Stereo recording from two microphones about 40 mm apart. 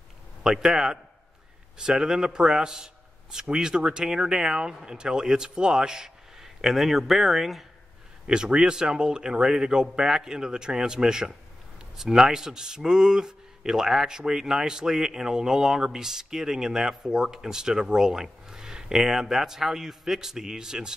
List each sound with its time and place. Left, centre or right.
0.4 s speech: centre
8.3 s speech: right